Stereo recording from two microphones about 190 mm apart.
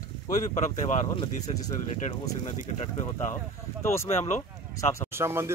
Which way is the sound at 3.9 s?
15° left (ahead or behind).